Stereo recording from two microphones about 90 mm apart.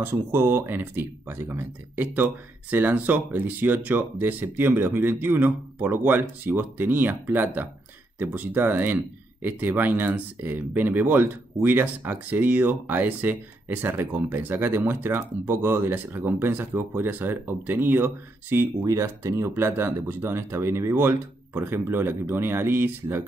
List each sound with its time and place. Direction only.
0.0 s speech: 30° right (ahead or behind)